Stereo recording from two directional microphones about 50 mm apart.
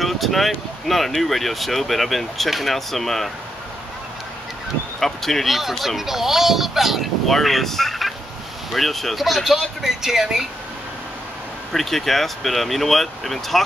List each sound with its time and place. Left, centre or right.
0.0 s a sound: centre
0.8 s speech: centre
5.0 s speech: centre
11.7 s speech: centre